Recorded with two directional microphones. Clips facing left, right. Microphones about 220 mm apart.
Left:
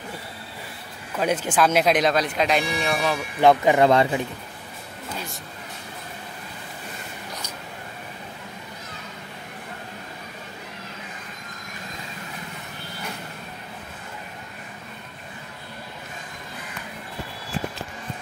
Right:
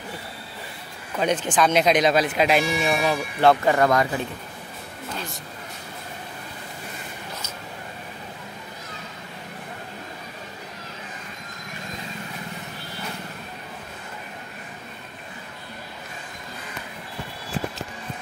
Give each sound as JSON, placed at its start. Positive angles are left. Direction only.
{"t": 1.1, "sound": "speech", "side_deg": 5}
{"t": 3.3, "sound": "speech", "side_deg": 15}
{"t": 3.9, "sound": "a man's voice", "side_deg": 30}